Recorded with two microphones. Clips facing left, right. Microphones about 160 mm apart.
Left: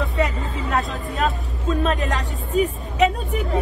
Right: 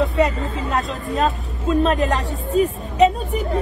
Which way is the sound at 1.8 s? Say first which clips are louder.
Right 6 dB; 35° right (ahead or behind).